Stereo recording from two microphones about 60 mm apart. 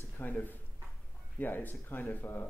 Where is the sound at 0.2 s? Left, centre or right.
Left.